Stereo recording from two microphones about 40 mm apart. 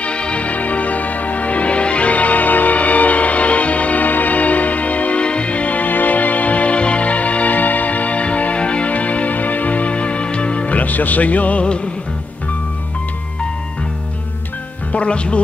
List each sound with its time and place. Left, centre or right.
0.0 s music: left
14.9 s music: left